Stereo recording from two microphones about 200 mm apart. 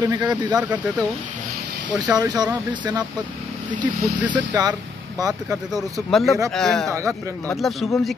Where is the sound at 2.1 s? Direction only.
20° right (ahead or behind).